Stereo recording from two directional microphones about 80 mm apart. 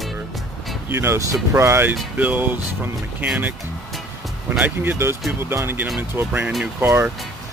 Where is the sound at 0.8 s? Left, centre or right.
Right.